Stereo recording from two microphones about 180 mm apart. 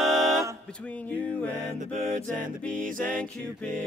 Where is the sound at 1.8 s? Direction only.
45° right (ahead or behind).